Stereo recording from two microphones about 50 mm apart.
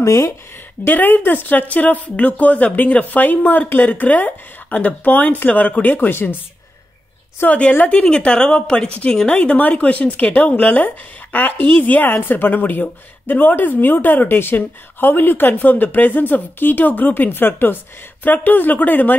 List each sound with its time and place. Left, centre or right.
0.0 s speech: left
0.8 s a woman's voice: left
7.4 s a woman's voice: left